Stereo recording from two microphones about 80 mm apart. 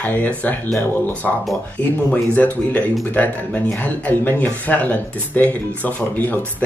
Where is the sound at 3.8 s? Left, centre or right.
Left.